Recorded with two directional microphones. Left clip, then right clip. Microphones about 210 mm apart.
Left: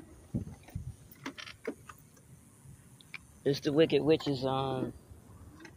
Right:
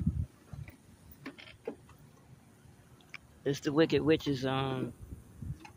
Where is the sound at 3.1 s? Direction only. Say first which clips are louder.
Left 3 dB; 5° left (ahead or behind).